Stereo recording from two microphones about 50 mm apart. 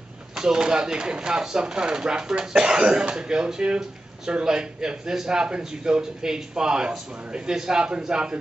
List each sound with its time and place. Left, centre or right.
0.4 s a man's voice: centre